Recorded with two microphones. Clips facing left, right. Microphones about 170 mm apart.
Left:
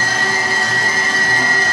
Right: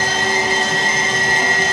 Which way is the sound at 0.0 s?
20° right (ahead or behind).